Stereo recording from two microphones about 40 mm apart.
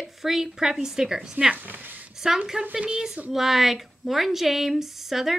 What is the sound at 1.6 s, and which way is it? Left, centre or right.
Speech, right.